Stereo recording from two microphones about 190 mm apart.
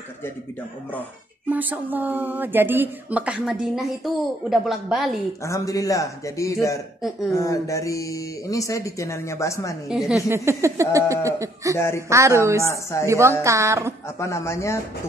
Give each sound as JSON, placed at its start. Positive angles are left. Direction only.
{"t": 1.5, "sound": "a woman's voice", "side_deg": -10}
{"t": 5.4, "sound": "speech", "side_deg": 15}
{"t": 9.8, "sound": "speech", "side_deg": 0}
{"t": 10.3, "sound": "a woman's voice", "side_deg": -15}
{"t": 11.7, "sound": "speech", "side_deg": 15}
{"t": 12.1, "sound": "a woman's voice", "side_deg": -15}
{"t": 14.2, "sound": "speech", "side_deg": 15}